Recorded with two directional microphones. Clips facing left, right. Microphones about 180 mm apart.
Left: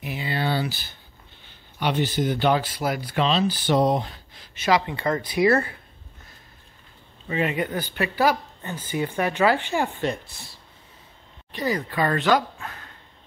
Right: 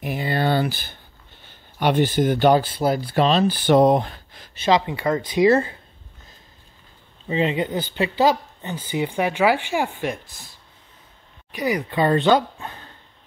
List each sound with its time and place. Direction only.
0.0 s speech: 50° right (ahead or behind)
2.6 s speech: 30° right (ahead or behind)
3.3 s speech: 55° right (ahead or behind)
4.6 s speech: 20° right (ahead or behind)
7.2 s speech: 25° right (ahead or behind); by 10.2 s 10° right (ahead or behind)
11.5 s speech: 15° right (ahead or behind)
12.0 s speech: 25° right (ahead or behind)